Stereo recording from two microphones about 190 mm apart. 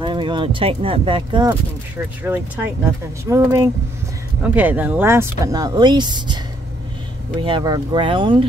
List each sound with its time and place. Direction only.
0.0 s speech: 25° right (ahead or behind)
2.2 s speech: 10° right (ahead or behind); by 8.5 s 25° right (ahead or behind)